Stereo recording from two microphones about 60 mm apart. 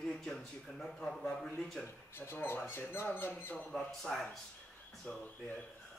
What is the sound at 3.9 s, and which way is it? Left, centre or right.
Speech, centre.